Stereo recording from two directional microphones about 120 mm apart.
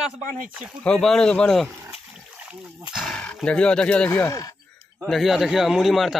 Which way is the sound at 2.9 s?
5° left (ahead or behind).